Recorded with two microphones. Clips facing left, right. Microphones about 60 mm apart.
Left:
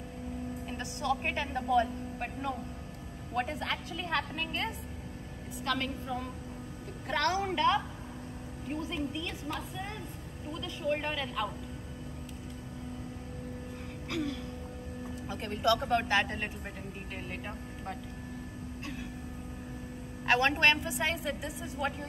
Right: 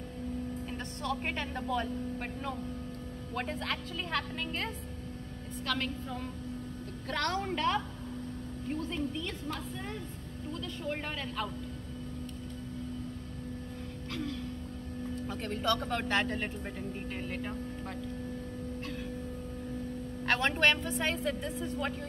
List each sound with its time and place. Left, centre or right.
0.7 s speech: centre
7.1 s a woman's voice: centre
8.8 s speech: centre
10.8 s speech: centre
15.0 s speech: centre
20.2 s speech: centre